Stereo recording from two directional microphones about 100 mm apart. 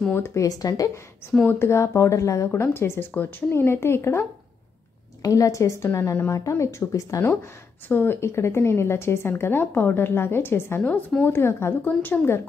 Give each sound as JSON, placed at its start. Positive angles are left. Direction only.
{"t": 0.1, "sound": "a woman's voice", "side_deg": 30}
{"t": 1.4, "sound": "a woman's voice", "side_deg": 20}
{"t": 10.8, "sound": "a woman's voice", "side_deg": 10}
{"t": 11.2, "sound": "speech", "side_deg": 25}